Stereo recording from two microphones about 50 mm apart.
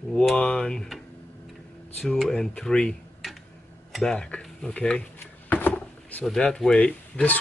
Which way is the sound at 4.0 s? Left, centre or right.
Centre.